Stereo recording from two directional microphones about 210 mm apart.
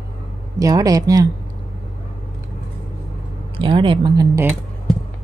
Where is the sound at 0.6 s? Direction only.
15° right (ahead or behind).